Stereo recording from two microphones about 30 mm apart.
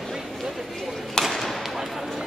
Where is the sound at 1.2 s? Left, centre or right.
Left.